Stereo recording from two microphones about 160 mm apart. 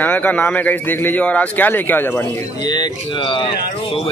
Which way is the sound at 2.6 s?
25° left (ahead or behind).